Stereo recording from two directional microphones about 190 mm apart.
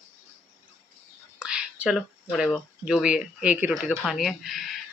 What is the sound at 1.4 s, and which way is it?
Speech, 5° right (ahead or behind).